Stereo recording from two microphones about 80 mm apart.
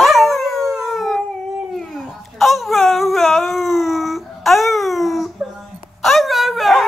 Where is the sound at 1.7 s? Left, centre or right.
Centre.